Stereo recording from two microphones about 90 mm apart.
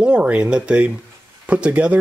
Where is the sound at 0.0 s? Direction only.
15° right (ahead or behind).